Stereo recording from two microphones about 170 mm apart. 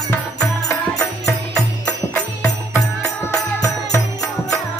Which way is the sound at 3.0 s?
20° left (ahead or behind).